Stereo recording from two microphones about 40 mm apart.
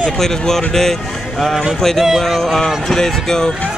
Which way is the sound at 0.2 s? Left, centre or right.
Centre.